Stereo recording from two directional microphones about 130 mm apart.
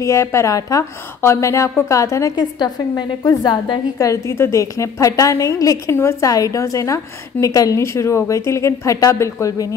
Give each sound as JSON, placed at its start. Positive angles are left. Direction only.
{"t": 0.0, "sound": "a woman's voice", "side_deg": 20}